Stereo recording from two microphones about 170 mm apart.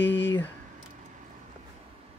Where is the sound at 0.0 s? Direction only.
90° left.